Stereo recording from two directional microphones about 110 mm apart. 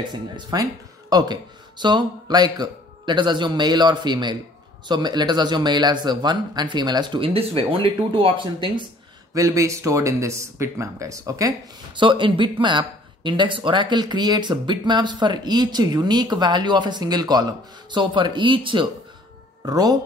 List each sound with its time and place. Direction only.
0.1 s a man's voice: 35° right (ahead or behind)
9.3 s speech: 30° right (ahead or behind)
11.9 s speech: 50° right (ahead or behind)
19.6 s a man's voice: 35° right (ahead or behind)